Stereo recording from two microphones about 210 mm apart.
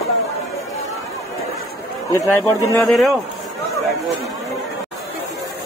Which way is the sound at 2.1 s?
15° left (ahead or behind).